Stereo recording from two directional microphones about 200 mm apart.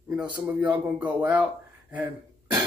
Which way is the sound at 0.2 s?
20° right (ahead or behind).